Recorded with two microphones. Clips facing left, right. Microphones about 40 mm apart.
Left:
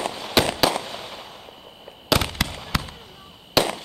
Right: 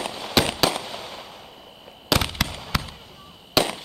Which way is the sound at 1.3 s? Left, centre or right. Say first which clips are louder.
Left 1 dB; left.